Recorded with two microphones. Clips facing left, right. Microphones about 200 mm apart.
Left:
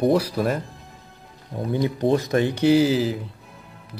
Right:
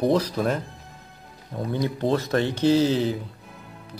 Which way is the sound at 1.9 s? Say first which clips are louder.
Left 3 dB; 15° left (ahead or behind).